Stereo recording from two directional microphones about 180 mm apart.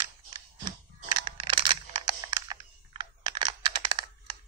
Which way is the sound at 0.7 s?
25° right (ahead or behind).